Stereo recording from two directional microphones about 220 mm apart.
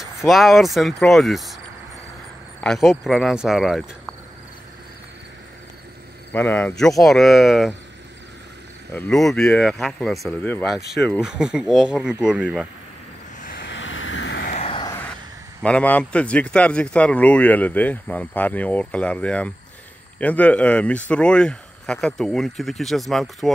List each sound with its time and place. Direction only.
0.2 s speech: centre (ahead or behind)
2.6 s speech: centre (ahead or behind)
6.3 s speech: 10° left (ahead or behind)
8.9 s speech: 5° left (ahead or behind)
13.6 s vehicle: 55° left (ahead or behind)
14.4 s a sound: 30° left (ahead or behind)
15.6 s speech: 5° left (ahead or behind)